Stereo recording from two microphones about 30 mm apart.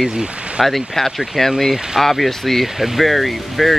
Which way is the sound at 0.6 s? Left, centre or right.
Centre.